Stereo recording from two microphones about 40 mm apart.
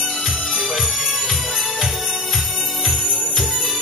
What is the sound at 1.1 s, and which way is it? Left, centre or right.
Jingle bell, centre.